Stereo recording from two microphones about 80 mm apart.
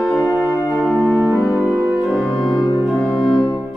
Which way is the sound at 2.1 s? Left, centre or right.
Centre.